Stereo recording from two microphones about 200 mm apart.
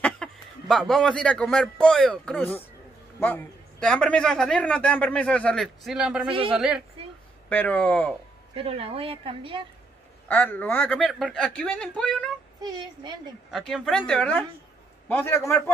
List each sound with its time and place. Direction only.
0.0 s a man's voice: 5° left (ahead or behind)
6.2 s speech: 30° right (ahead or behind)
6.5 s a man's voice: 5° right (ahead or behind)
7.4 s speech: 10° left (ahead or behind)
8.5 s speech: 30° right (ahead or behind)
10.2 s speech: 10° left (ahead or behind)
13.5 s a man's voice: centre (ahead or behind)